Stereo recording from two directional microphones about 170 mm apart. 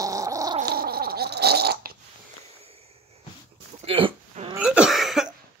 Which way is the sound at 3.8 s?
35° right (ahead or behind).